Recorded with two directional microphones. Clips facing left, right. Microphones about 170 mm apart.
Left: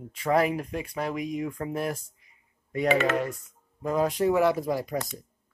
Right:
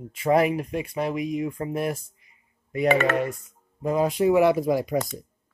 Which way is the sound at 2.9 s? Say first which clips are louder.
Right 2 dB; 65° right (ahead or behind).